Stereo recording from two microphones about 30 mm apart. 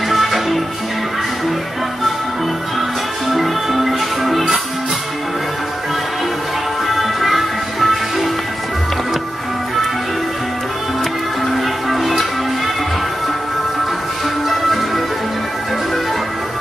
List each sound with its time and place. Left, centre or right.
0.1 s music: centre
3.3 s music: centre
6.9 s music: centre
11.5 s music: centre
14.5 s music: centre